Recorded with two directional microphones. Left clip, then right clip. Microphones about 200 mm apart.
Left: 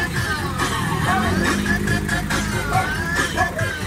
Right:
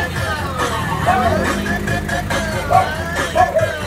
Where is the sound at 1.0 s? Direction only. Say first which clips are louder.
Right 7 dB; 15° left (ahead or behind).